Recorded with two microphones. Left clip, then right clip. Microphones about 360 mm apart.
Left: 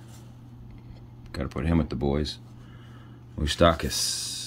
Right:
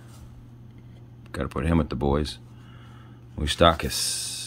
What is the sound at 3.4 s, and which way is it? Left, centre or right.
Speech, centre.